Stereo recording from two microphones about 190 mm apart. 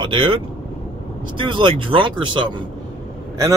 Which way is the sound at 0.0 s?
25° right (ahead or behind).